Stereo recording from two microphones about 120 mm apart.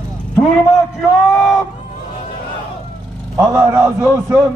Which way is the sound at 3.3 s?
25° right (ahead or behind).